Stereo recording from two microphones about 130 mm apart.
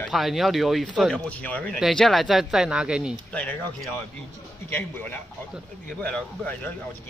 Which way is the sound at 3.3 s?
10° left (ahead or behind).